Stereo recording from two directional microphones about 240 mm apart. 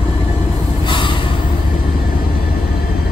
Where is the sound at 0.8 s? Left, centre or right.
Centre.